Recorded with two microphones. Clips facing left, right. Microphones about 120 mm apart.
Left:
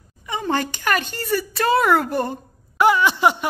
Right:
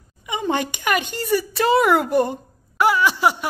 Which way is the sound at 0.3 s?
15° right (ahead or behind).